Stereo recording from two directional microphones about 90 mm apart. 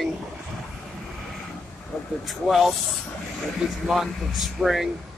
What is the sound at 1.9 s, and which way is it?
Speech, 5° right (ahead or behind).